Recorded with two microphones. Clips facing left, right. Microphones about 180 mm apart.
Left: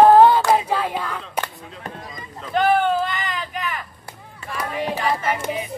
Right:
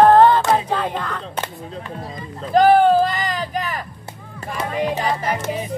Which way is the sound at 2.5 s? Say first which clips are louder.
Right 6 dB; 35° right (ahead or behind).